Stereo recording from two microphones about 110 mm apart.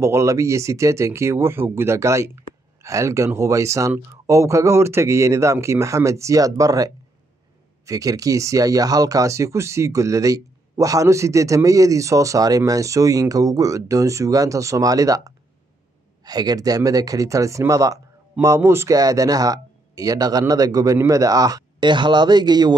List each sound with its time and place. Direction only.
0.0 s speech: 25° right (ahead or behind)